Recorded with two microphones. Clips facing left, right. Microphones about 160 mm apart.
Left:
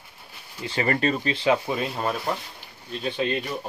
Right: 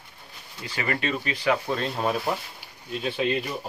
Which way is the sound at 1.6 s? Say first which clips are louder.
Even; 10° left (ahead or behind).